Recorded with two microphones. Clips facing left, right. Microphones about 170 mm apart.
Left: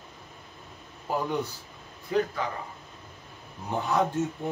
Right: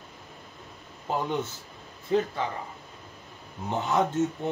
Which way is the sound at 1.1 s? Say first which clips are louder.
Even; 25° right (ahead or behind).